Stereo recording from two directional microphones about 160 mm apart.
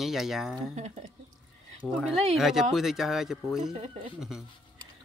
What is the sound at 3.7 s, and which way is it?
Speech, 40° right (ahead or behind).